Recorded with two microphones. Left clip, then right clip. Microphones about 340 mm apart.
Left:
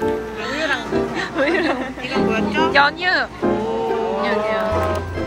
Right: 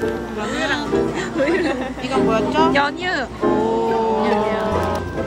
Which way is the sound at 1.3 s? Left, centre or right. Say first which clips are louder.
Left 1 dB; centre.